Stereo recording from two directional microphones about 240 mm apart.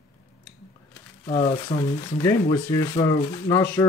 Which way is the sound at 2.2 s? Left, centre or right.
Centre.